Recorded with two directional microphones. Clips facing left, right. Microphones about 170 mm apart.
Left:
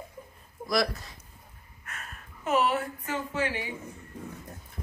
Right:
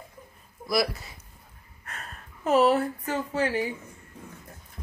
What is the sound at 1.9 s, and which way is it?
Speech, 35° right (ahead or behind).